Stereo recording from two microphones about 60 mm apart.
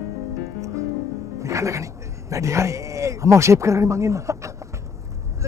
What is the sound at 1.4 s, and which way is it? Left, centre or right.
Speech, right.